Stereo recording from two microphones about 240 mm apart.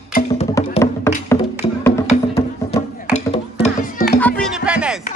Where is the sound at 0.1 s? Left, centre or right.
Left.